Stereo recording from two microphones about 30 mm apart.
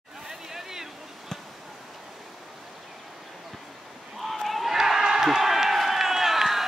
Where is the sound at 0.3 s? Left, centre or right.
Centre.